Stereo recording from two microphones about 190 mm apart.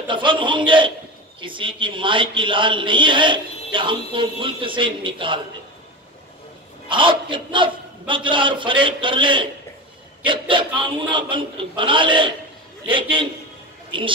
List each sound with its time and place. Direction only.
0.1 s a man's voice: 25° right (ahead or behind)
6.9 s a man's voice: 25° right (ahead or behind)